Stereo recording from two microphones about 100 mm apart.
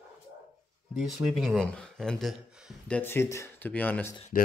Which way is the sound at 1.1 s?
Centre (ahead or behind).